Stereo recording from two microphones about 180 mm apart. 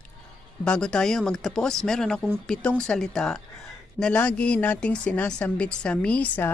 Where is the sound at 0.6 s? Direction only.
5° left (ahead or behind).